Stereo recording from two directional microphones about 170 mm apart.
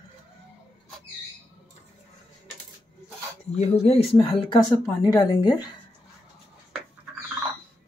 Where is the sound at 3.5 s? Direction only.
35° left (ahead or behind); by 5.5 s 20° left (ahead or behind).